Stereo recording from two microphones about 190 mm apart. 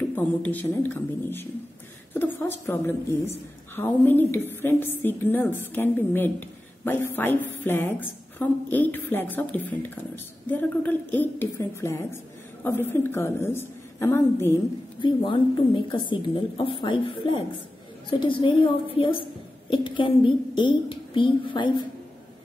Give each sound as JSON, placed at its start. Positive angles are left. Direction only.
{"t": 0.1, "sound": "a woman's voice", "side_deg": 10}
{"t": 2.1, "sound": "a sound", "side_deg": 10}
{"t": 2.6, "sound": "a woman's voice", "side_deg": 10}
{"t": 15.0, "sound": "a woman's voice", "side_deg": 25}